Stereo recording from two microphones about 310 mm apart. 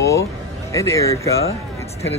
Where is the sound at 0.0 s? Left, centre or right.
Centre.